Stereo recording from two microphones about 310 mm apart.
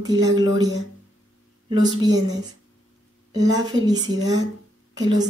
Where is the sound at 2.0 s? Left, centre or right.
Centre.